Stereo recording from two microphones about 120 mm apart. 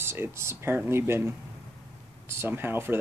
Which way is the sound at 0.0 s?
20° right (ahead or behind).